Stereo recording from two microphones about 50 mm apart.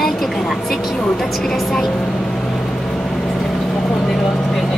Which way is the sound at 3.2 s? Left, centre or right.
Centre.